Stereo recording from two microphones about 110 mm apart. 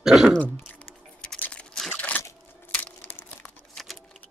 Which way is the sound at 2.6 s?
15° left (ahead or behind).